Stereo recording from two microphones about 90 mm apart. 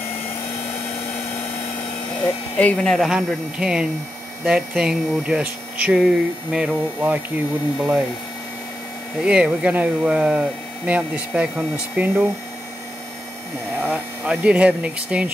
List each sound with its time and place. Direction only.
2.2 s speech: 15° left (ahead or behind)
3.1 s speech: 5° right (ahead or behind)
7.0 s speech: 20° right (ahead or behind)
9.2 s speech: 10° right (ahead or behind)
13.7 s speech: 15° right (ahead or behind)